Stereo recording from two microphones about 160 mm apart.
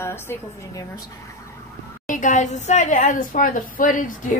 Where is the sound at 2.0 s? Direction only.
55° left (ahead or behind).